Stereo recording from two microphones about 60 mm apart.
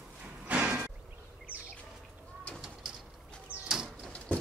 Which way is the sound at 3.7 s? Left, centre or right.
Centre.